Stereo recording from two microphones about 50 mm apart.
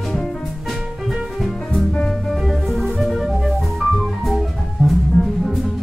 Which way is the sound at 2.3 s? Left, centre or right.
Centre.